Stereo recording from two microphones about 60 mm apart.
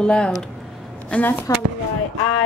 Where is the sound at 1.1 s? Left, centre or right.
Left.